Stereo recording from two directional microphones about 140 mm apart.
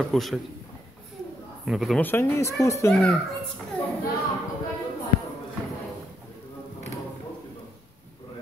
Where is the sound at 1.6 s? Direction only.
Centre (ahead or behind).